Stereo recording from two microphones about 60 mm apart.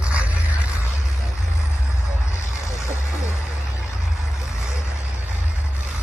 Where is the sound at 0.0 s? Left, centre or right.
Right.